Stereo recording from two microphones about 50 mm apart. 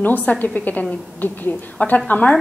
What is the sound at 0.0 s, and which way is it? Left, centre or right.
A woman's voice, left.